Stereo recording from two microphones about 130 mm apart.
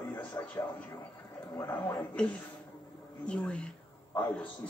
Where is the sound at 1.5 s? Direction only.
30° left (ahead or behind).